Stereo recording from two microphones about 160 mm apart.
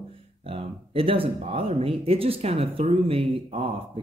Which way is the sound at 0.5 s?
35° right (ahead or behind).